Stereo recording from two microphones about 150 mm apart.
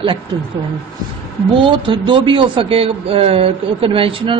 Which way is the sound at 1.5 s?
35° right (ahead or behind).